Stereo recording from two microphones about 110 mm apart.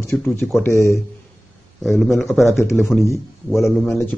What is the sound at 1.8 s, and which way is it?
A man's voice, centre (ahead or behind).